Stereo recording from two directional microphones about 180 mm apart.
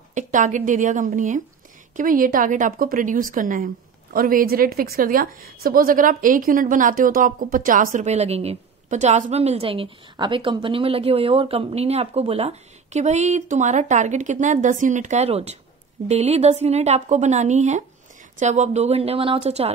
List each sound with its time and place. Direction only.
0.1 s a woman's voice: 45° right (ahead or behind)